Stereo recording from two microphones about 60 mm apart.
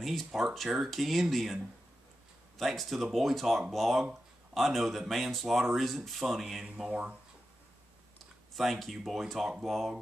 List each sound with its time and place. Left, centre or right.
0.0 s speech: centre
6.9 s speech: right
8.5 s speech: centre